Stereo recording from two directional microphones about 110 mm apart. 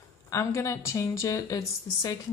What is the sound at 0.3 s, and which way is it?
A woman's voice, 30° left (ahead or behind).